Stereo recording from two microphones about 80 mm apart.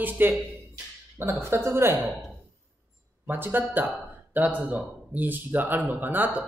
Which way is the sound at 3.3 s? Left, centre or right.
Right.